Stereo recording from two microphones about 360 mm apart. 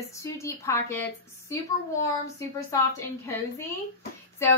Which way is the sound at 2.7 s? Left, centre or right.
Centre.